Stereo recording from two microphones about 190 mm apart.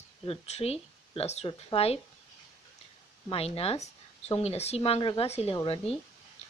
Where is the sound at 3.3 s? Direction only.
30° left (ahead or behind).